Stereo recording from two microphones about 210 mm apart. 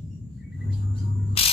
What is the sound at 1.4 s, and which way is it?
Mechanisms, 25° left (ahead or behind).